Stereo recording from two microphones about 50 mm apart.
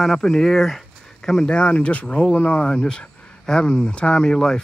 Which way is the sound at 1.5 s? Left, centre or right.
Left.